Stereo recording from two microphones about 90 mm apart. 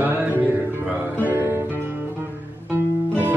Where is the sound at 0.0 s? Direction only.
20° right (ahead or behind).